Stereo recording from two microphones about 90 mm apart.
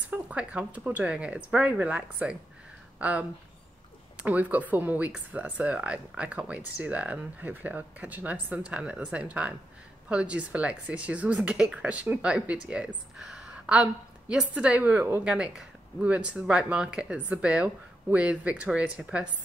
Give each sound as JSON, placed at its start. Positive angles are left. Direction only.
{"t": 0.1, "sound": "speech", "side_deg": -15}
{"t": 15.2, "sound": "speech", "side_deg": -10}